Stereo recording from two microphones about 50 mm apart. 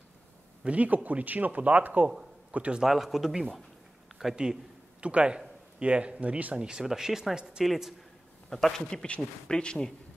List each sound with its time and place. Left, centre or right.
0.7 s a man's voice: right
2.8 s speech: centre
4.4 s a man's voice: centre
7.6 s speech: centre
9.0 s speech: left